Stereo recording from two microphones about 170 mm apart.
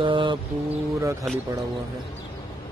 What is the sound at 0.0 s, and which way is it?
Mantra, 30° right (ahead or behind).